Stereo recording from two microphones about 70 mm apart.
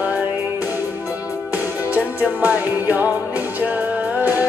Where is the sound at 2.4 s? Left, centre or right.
Right.